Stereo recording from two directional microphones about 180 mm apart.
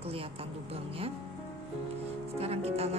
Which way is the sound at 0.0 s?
30° right (ahead or behind).